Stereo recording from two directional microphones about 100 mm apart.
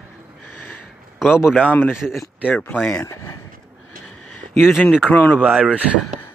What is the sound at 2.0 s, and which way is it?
Speech, 5° right (ahead or behind).